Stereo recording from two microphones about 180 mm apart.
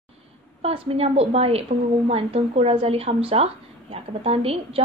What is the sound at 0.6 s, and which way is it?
A woman's voice, 35° right (ahead or behind).